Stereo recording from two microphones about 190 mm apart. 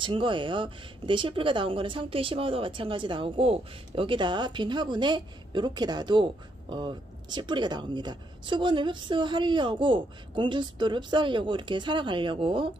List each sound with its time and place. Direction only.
0.0 s speech: 25° right (ahead or behind)